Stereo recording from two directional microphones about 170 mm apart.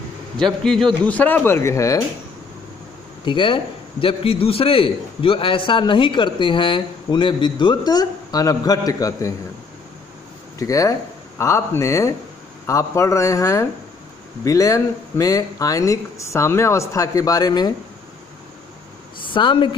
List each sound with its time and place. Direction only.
0.4 s speech: centre (ahead or behind); by 2.0 s 20° left (ahead or behind)
3.3 s a man's voice: 30° left (ahead or behind)
10.6 s a man's voice: 20° left (ahead or behind)
19.2 s speech: 30° left (ahead or behind)